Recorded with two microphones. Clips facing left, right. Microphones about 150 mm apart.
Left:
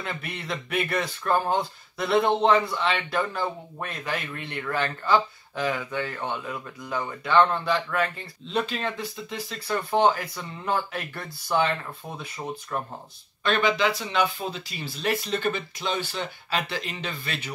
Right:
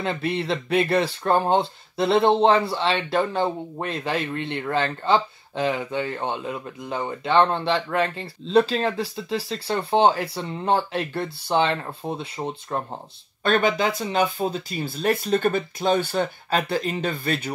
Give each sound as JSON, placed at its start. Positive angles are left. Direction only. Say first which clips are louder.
{"t": 0.0, "sound": "speech", "louder": "right 9 dB", "side_deg": -30}
{"t": 13.4, "sound": "speech", "louder": "right 3 dB", "side_deg": -45}